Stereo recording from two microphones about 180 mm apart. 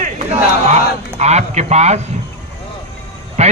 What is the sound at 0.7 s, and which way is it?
A man's voice, 40° right (ahead or behind).